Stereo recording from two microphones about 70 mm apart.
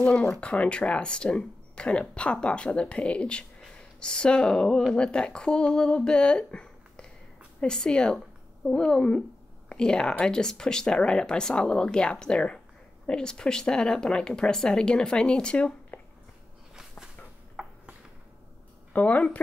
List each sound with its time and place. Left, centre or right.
0.0 s speech: centre
17.6 s a sound: centre
18.9 s speech: left